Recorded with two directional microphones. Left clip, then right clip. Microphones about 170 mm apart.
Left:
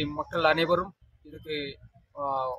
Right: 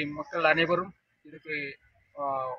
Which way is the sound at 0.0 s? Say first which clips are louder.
Left 1 dB; 20° left (ahead or behind).